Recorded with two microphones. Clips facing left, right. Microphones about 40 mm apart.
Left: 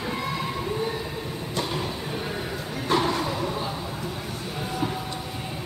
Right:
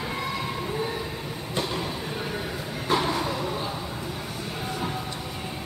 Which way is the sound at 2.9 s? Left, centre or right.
Centre.